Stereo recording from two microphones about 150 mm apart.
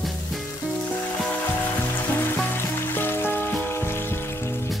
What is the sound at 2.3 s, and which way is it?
Music, 15° left (ahead or behind).